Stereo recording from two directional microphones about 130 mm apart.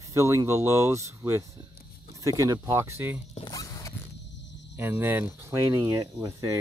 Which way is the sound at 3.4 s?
25° left (ahead or behind).